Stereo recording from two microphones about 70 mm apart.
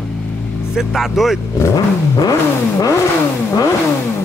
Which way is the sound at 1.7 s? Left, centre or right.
Left.